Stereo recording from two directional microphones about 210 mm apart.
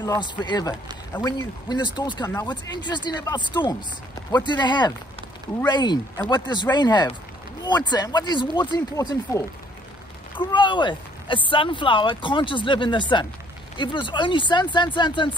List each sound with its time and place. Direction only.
0.0 s speech: 20° left (ahead or behind)
10.5 s speech: 20° left (ahead or behind)